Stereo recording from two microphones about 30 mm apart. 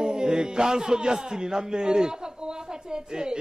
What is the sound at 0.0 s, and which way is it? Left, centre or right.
A man's voice, right.